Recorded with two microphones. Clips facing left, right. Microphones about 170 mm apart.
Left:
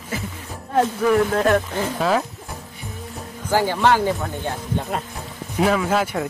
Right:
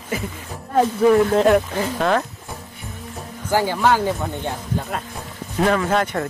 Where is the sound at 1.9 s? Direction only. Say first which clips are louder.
Right 1 dB; 5° left (ahead or behind).